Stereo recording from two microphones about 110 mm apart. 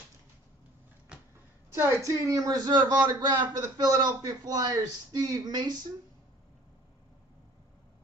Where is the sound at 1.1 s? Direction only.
10° right (ahead or behind).